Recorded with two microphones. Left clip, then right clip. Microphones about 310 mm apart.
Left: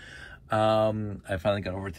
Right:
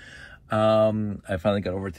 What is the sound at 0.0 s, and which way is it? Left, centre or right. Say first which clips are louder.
Speech: right 1 dB; right.